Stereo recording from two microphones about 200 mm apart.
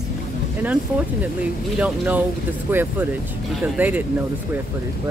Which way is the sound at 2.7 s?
10° right (ahead or behind).